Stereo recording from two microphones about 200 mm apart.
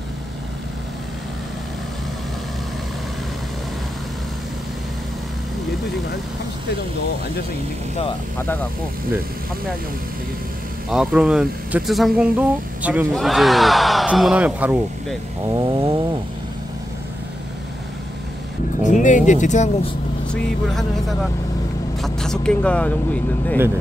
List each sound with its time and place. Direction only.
10.9 s speech: 5° right (ahead or behind)
15.6 s a sound: 20° right (ahead or behind)
18.9 s speech: 40° left (ahead or behind)
20.2 s speech: centre (ahead or behind)